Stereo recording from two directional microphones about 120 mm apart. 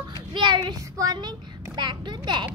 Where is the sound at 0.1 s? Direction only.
40° right (ahead or behind).